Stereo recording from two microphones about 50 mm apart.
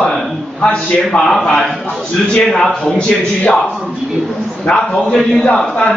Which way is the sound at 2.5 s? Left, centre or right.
Centre.